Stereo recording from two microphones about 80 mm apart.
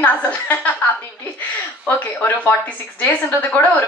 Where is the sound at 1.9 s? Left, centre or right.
Left.